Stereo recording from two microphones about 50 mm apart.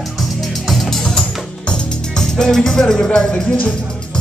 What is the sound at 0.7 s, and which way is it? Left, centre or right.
Music, centre.